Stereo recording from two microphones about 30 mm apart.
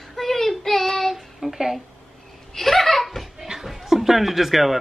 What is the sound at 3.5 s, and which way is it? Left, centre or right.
Chuckle, centre.